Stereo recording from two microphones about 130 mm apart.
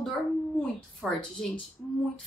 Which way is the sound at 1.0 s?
5° left (ahead or behind).